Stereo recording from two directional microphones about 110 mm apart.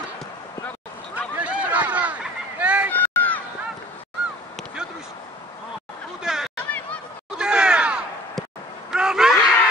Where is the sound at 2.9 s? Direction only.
15° left (ahead or behind).